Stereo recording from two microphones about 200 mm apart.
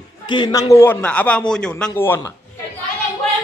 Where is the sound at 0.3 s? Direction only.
20° left (ahead or behind).